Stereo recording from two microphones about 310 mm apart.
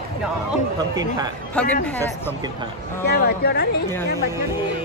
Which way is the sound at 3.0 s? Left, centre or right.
Left.